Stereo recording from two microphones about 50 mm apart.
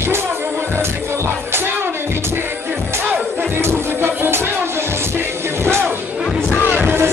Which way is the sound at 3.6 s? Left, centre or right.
Right.